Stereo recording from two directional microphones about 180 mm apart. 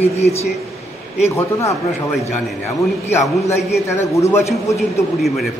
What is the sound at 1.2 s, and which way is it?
Speech, 15° left (ahead or behind).